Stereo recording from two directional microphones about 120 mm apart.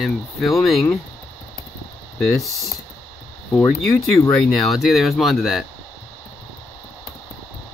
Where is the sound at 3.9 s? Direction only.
25° left (ahead or behind).